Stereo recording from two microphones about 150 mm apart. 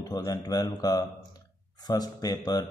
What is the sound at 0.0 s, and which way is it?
Speech, 25° left (ahead or behind).